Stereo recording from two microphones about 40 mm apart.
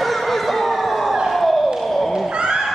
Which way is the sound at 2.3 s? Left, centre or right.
Centre.